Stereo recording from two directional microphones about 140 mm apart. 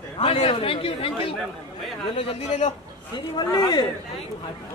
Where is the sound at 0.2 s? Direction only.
45° left (ahead or behind).